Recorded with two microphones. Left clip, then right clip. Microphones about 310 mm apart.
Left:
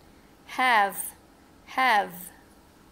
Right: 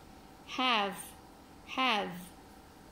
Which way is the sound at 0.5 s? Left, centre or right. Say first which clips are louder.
Left 9 dB; left.